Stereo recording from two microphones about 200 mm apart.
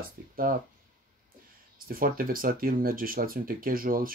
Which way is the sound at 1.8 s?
45° right (ahead or behind).